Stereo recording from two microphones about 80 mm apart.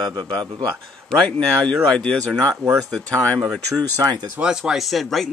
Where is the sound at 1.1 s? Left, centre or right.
Centre.